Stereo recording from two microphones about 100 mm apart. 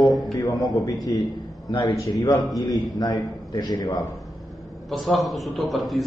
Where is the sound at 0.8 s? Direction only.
40° left (ahead or behind).